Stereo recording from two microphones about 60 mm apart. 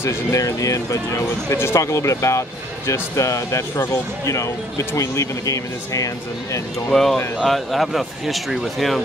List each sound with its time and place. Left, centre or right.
0.0 s speech: left
0.4 s speech: left
6.9 s speech: centre